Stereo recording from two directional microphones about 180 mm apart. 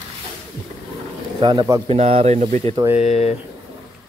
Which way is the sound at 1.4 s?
25° right (ahead or behind).